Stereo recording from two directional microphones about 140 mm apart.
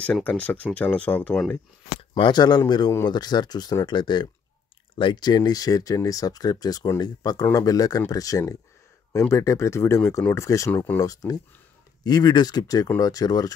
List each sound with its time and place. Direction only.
0.0 s speech: 10° left (ahead or behind)
2.0 s speech: 35° left (ahead or behind)